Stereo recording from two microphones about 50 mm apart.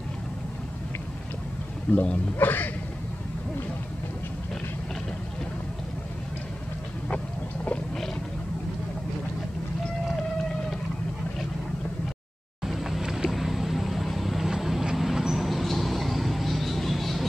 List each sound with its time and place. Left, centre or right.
1.9 s speech: left
2.3 s speech: left
12.6 s vehicle: centre